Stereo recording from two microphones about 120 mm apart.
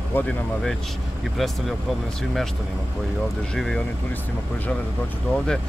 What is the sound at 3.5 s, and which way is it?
Speech, 5° left (ahead or behind).